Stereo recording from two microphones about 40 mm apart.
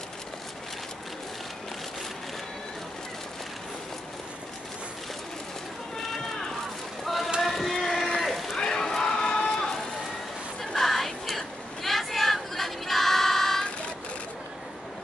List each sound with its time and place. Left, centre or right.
7.4 s vehicle: centre
8.2 s sheep: centre
8.5 s a sound: centre